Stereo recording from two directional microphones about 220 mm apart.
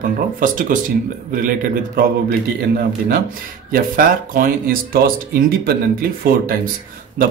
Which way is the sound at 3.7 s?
40° right (ahead or behind).